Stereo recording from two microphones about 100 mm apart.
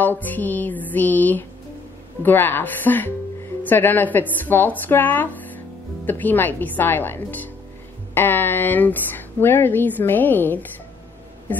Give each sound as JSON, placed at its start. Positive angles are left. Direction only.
{"t": 0.0, "sound": "music", "side_deg": 20}
{"t": 2.2, "sound": "a woman's voice", "side_deg": 20}